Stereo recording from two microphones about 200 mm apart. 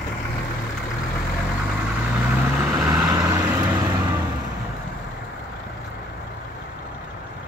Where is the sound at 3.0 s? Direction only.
20° right (ahead or behind).